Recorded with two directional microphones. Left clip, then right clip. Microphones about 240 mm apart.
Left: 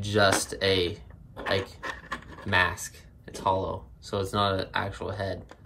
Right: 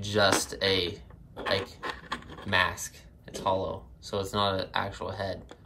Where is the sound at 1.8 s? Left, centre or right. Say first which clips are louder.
Even; right.